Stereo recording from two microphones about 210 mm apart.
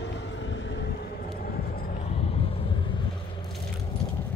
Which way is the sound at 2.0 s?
30° left (ahead or behind).